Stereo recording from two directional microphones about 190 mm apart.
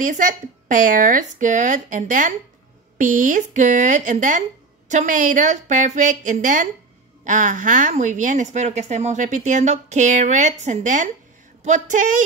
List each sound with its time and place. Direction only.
0.0 s speech: 45° right (ahead or behind)